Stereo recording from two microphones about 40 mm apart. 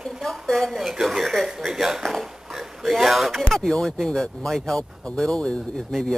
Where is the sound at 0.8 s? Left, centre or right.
Centre.